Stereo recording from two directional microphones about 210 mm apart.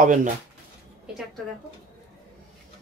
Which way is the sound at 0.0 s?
35° right (ahead or behind).